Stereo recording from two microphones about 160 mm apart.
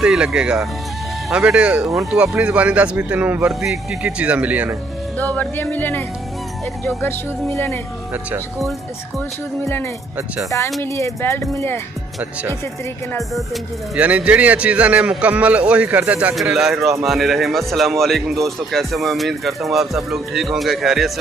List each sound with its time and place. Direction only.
0.0 s a man's voice: 5° right (ahead or behind)
5.1 s speech: 10° left (ahead or behind)
10.8 s speech: 20° left (ahead or behind)
13.9 s a man's voice: 10° right (ahead or behind)